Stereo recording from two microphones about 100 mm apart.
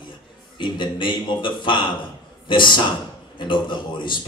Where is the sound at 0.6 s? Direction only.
50° left (ahead or behind).